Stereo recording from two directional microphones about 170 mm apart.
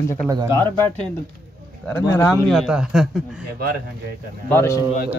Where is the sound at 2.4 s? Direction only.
Centre (ahead or behind).